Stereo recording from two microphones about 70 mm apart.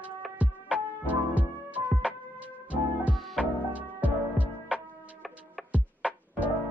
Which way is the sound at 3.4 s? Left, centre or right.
Right.